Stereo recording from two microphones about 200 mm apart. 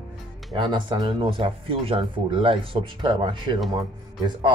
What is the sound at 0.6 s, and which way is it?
Speech, 25° right (ahead or behind).